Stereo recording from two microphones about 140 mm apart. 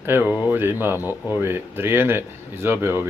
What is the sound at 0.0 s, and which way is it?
Speech, 15° right (ahead or behind).